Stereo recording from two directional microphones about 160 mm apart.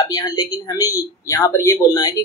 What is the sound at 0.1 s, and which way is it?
A woman's voice, 25° left (ahead or behind).